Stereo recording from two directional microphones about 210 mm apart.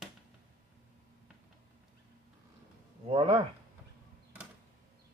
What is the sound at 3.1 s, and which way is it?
Speech, 25° right (ahead or behind).